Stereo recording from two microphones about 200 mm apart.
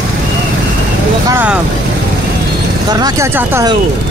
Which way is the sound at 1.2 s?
10° right (ahead or behind).